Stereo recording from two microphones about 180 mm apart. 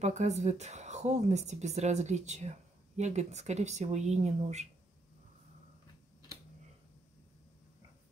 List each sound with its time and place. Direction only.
0.0 s a woman's voice: 40° right (ahead or behind)